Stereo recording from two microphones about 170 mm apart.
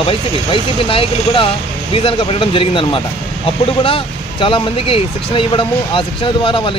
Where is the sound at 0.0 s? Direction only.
30° left (ahead or behind).